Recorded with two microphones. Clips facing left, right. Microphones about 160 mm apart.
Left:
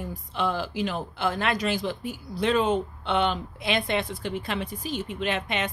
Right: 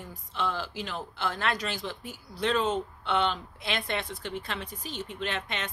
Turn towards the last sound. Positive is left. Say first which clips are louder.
# left 6 dB
turn(degrees=10)  # may be behind; listen again after turning